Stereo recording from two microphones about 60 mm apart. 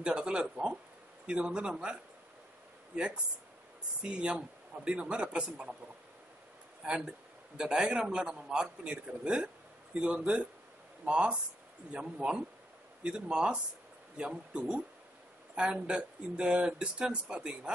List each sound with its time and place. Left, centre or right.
0.0 s a man's voice: centre
4.0 s a man's voice: centre
6.8 s a man's voice: centre